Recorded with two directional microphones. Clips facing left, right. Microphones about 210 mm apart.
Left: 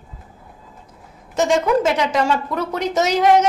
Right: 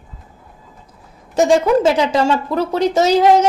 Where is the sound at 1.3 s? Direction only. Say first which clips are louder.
Right 4 dB; 30° right (ahead or behind).